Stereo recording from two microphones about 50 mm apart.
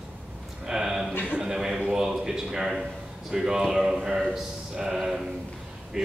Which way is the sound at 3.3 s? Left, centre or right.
Centre.